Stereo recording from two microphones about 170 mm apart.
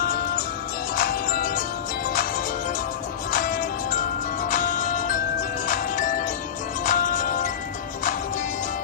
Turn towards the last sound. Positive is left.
turn(degrees=50)  # may be behind; listen again after turning